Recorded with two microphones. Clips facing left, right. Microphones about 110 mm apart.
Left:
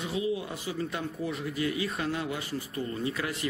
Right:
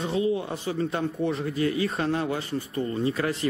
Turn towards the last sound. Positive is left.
turn(degrees=-30)  # may be behind; listen again after turning